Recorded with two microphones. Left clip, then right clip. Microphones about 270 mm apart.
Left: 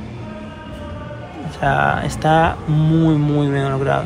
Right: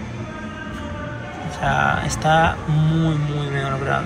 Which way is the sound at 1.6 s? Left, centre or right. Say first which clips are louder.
Left 3 dB; left.